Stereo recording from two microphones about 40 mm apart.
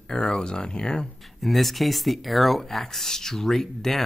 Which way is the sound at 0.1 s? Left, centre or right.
Left.